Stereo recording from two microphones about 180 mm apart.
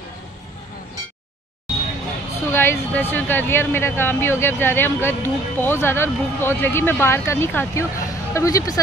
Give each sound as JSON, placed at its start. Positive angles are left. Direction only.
{"t": 2.4, "sound": "speech", "side_deg": 15}